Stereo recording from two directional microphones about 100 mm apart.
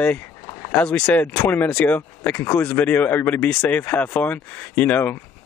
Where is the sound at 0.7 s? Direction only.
15° left (ahead or behind).